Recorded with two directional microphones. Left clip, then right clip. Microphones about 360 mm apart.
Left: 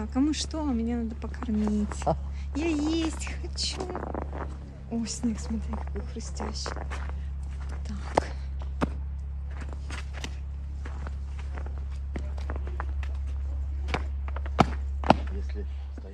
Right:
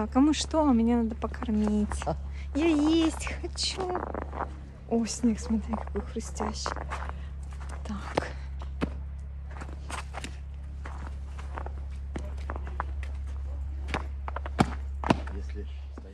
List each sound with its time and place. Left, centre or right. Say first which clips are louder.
0.0 s speech: right 3 dB; centre
7.6 s a sound: right 4 dB; centre
8.8 s music: left 3 dB; centre
9.6 s walk: right 3 dB; centre
14.2 s walk: right 4 dB; centre